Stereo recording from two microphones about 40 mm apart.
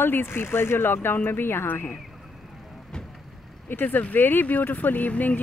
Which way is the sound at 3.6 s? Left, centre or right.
Left.